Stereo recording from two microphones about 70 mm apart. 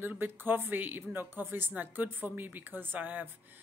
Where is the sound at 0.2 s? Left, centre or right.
Right.